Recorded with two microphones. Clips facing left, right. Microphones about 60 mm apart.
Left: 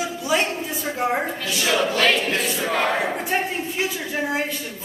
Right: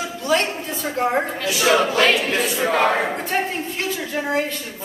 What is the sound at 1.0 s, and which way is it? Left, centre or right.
Speech, centre.